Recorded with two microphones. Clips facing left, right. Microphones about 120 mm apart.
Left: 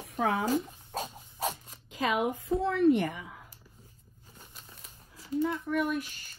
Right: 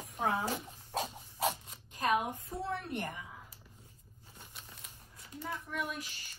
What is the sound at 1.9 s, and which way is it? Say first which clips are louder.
A woman's voice: left 3 dB; 90° left.